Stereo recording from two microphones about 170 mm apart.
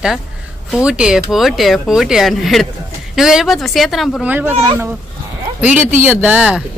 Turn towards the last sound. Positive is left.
turn(degrees=-5)  # may be behind; listen again after turning